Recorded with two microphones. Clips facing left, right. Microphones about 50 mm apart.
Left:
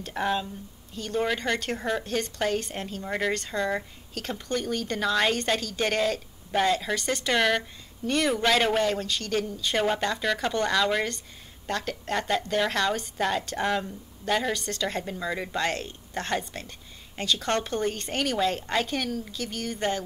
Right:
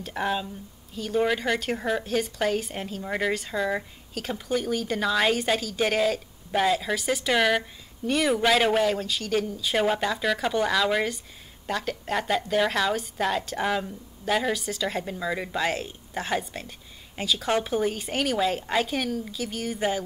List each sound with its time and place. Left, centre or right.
0.0 s speech: centre